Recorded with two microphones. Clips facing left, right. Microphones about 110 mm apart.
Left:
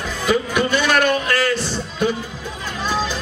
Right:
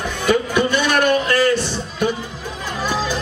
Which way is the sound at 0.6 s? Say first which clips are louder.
Even; 15° right (ahead or behind).